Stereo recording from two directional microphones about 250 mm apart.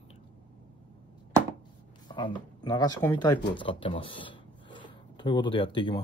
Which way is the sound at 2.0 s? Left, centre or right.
Centre.